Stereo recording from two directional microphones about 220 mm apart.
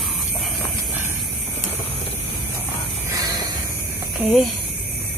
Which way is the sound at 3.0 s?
15° right (ahead or behind).